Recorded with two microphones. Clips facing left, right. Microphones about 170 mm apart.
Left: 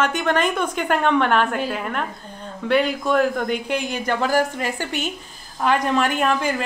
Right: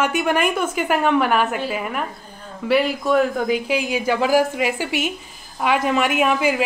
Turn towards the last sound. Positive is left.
turn(degrees=-5)  # may be behind; listen again after turning